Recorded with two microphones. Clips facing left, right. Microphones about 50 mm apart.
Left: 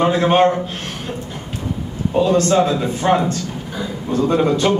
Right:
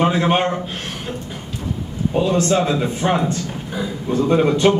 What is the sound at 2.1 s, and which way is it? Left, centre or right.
A man's voice, right.